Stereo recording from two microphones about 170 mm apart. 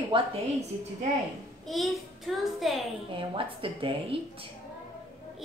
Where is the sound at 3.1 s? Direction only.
30° right (ahead or behind).